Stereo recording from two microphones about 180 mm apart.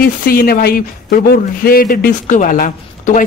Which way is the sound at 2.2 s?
45° left (ahead or behind).